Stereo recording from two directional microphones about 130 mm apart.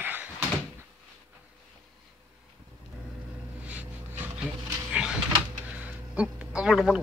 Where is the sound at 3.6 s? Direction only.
10° right (ahead or behind).